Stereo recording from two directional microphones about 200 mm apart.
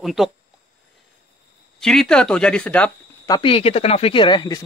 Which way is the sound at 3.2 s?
20° left (ahead or behind).